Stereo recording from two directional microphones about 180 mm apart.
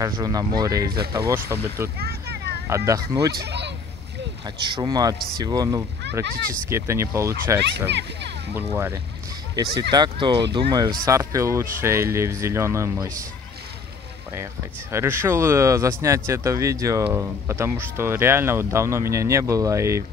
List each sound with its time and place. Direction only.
0.0 s speech: 20° right (ahead or behind)
0.8 s speech: 60° right (ahead or behind)
1.1 s speech: 15° right (ahead or behind)
2.0 s a sound: 60° right (ahead or behind)
2.7 s speech: 15° right (ahead or behind)
3.3 s speech: 70° right (ahead or behind)
4.6 s speech: 25° right (ahead or behind)
6.2 s speech: 55° right (ahead or behind)
6.7 s speech: 15° right (ahead or behind)
8.7 s speech: 15° right (ahead or behind)
14.3 s speech: 15° right (ahead or behind)